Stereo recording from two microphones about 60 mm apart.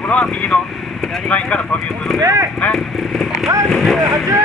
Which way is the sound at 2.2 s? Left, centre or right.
Right.